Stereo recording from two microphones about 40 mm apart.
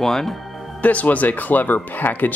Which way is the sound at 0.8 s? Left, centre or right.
Left.